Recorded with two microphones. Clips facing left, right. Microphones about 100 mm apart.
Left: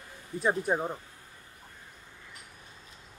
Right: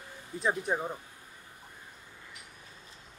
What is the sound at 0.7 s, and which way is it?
Speech, 15° left (ahead or behind).